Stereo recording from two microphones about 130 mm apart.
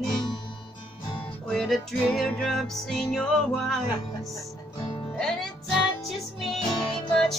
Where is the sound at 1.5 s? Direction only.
Centre (ahead or behind).